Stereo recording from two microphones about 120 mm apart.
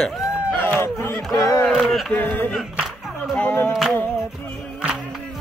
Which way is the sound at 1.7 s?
Centre (ahead or behind).